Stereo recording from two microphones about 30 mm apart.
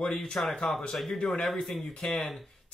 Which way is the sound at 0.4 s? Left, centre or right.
Left.